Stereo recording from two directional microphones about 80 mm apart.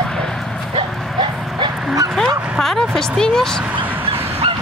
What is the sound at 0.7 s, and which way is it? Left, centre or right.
Dog, right.